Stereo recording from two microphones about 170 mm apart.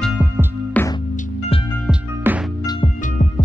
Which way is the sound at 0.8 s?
10° left (ahead or behind).